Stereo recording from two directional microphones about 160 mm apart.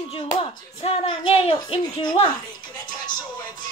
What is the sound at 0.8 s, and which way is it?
Speech, 35° left (ahead or behind).